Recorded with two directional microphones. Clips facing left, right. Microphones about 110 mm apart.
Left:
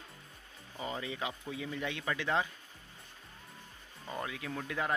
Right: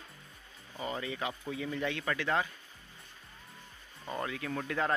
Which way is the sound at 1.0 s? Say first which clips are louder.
Right 2 dB; 20° left (ahead or behind).